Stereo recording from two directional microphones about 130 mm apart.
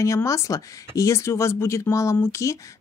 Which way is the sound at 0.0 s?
25° left (ahead or behind).